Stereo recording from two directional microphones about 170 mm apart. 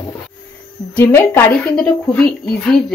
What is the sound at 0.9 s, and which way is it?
A woman's voice, 10° left (ahead or behind).